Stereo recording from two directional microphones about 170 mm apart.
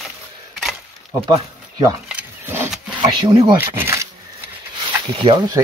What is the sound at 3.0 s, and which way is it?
Speech, 25° right (ahead or behind).